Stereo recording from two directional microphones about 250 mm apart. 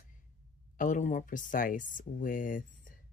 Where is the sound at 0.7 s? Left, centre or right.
Left.